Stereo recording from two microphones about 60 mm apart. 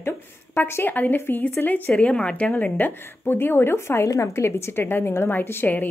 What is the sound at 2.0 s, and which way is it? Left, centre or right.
Speech, centre.